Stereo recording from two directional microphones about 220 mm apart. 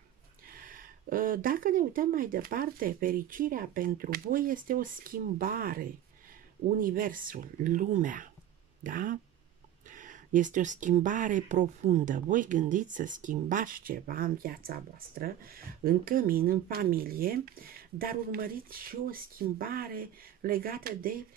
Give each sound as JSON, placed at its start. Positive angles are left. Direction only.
{"t": 0.5, "sound": "speech", "side_deg": -40}